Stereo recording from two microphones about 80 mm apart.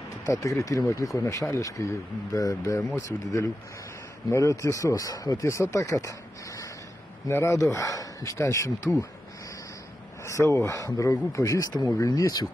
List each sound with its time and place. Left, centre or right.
0.3 s speech: left
7.2 s speech: left
10.2 s speech: left